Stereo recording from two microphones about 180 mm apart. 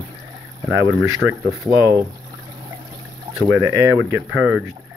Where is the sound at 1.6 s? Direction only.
15° right (ahead or behind).